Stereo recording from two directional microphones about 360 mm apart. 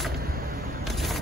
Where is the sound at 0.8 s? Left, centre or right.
Centre.